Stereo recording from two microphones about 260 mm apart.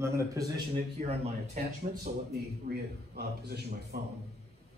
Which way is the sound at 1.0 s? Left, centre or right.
Right.